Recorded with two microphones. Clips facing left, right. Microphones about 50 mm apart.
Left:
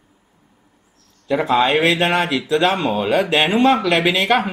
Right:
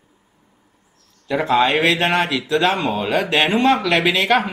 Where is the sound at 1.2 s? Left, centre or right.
Centre.